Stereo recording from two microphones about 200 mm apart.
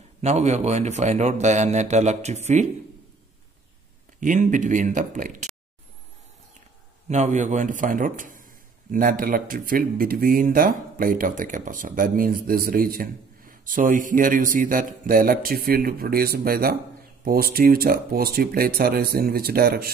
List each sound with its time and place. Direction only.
0.2 s a man's voice: 35° right (ahead or behind)
4.2 s a man's voice: 40° right (ahead or behind)
7.1 s a man's voice: 35° right (ahead or behind)